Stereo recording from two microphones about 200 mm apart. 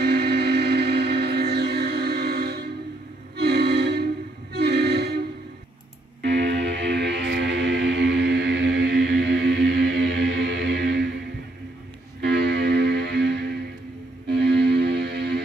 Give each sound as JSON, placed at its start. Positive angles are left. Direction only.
{"t": 0.0, "sound": "a sound", "side_deg": -55}
{"t": 3.3, "sound": "music", "side_deg": -55}
{"t": 6.2, "sound": "music", "side_deg": -60}